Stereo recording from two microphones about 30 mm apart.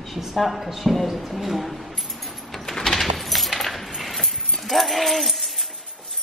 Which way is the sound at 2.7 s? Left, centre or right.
Centre.